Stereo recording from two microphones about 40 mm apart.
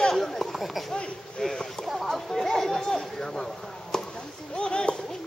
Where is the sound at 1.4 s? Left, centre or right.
Centre.